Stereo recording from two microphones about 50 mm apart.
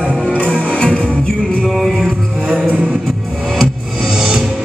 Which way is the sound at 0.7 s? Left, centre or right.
Left.